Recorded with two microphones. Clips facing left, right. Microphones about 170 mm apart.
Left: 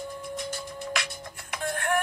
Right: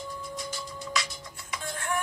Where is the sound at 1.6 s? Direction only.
60° left (ahead or behind).